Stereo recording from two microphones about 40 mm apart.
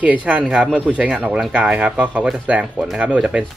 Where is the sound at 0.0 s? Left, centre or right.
Right.